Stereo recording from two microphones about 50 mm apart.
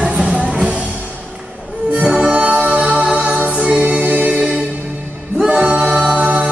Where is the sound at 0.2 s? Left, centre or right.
Centre.